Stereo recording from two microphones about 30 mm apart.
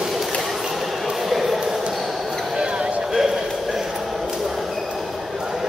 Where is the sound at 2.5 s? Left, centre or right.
Right.